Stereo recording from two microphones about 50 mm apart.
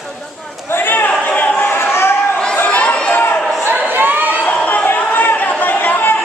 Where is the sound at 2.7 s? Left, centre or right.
Left.